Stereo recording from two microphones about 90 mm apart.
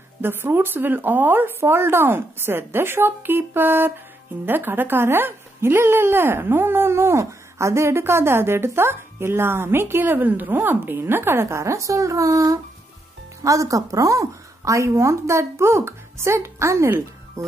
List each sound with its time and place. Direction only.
0.2 s a woman's voice: 25° right (ahead or behind)